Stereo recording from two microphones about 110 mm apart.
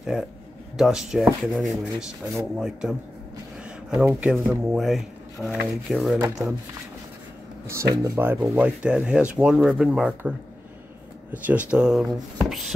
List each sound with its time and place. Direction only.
0.1 s speech: 5° right (ahead or behind)
7.6 s speech: 30° right (ahead or behind)
8.2 s speech: 20° right (ahead or behind)
11.3 s speech: 15° right (ahead or behind)